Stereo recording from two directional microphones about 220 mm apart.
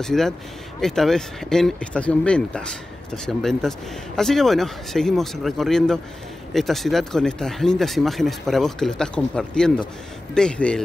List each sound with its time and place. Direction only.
0.0 s speech: centre (ahead or behind)